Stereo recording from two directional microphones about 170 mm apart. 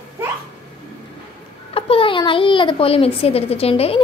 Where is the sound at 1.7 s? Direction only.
30° left (ahead or behind).